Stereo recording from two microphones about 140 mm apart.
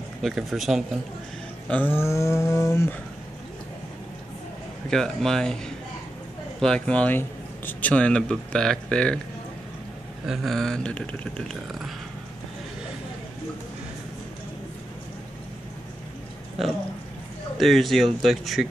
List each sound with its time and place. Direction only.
0.2 s speech: centre (ahead or behind)
1.7 s a sound: 15° left (ahead or behind)
4.8 s speech: 5° left (ahead or behind)
6.6 s speech: 5° left (ahead or behind)
10.2 s speech: centre (ahead or behind)
17.6 s speech: centre (ahead or behind)